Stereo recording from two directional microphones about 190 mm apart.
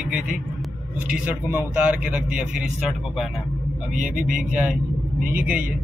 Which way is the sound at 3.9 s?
45° right (ahead or behind).